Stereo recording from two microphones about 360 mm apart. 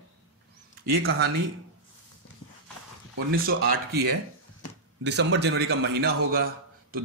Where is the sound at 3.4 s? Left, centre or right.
Right.